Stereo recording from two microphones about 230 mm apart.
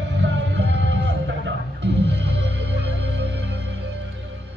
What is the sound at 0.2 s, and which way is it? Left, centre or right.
Music, right.